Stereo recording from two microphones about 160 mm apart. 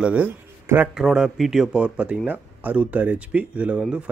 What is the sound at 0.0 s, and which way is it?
Speech, 10° right (ahead or behind).